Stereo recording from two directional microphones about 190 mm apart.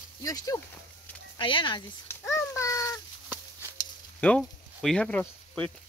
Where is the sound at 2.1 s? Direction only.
15° left (ahead or behind).